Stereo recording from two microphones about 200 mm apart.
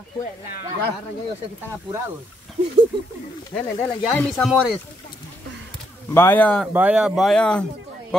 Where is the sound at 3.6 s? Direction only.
5° left (ahead or behind).